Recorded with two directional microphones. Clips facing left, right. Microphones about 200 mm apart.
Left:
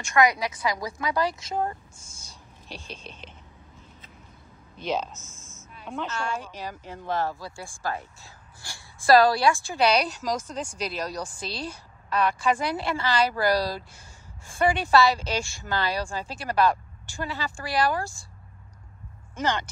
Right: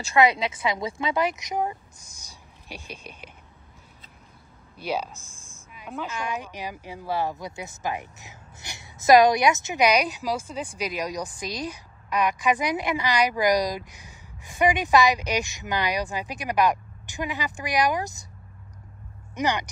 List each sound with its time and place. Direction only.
0.1 s a woman's voice: 25° right (ahead or behind); by 3.3 s 10° right (ahead or behind)
4.7 s a woman's voice: 10° right (ahead or behind)
19.3 s speech: 15° right (ahead or behind)